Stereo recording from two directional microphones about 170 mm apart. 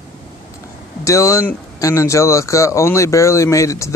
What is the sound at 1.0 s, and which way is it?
Speech, 20° left (ahead or behind).